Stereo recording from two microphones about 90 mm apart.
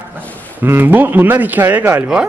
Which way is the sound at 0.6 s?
20° right (ahead or behind).